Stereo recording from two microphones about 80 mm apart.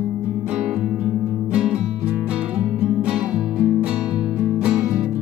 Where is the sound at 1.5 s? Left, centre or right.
Centre.